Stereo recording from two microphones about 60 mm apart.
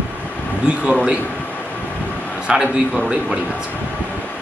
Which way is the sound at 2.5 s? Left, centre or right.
Centre.